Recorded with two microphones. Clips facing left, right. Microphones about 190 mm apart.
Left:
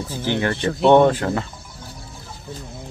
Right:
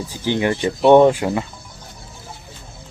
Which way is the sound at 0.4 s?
15° right (ahead or behind).